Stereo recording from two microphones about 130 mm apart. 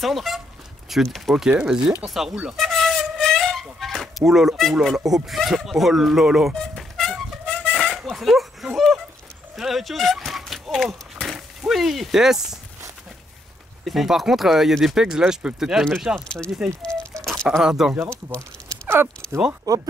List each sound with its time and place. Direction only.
0.0 s speech: centre (ahead or behind)
0.8 s a sound: centre (ahead or behind)
9.6 s run: centre (ahead or behind)
13.8 s speech: centre (ahead or behind)
19.7 s speech: 25° right (ahead or behind)